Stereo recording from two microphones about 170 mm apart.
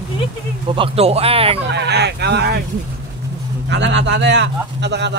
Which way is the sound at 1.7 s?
80° right.